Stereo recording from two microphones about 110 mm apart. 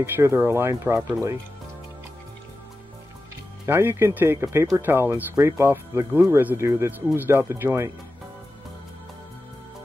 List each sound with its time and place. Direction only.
0.0 s speech: 20° right (ahead or behind)
3.6 s speech: 20° right (ahead or behind)